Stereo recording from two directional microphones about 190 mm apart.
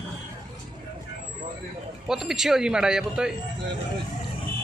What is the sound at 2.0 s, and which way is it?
A woman's voice, centre (ahead or behind).